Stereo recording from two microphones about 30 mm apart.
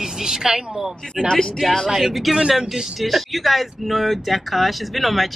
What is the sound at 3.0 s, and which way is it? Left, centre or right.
Speech, centre.